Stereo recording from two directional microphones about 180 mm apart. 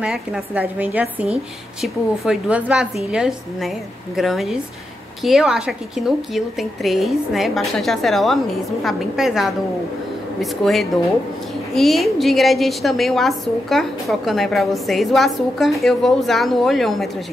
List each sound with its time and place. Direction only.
0.0 s a woman's voice: 5° right (ahead or behind)